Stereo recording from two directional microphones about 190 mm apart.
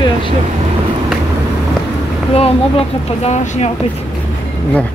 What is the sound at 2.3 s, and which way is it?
Speech, 30° left (ahead or behind).